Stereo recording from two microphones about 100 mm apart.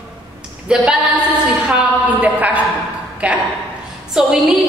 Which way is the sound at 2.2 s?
15° right (ahead or behind).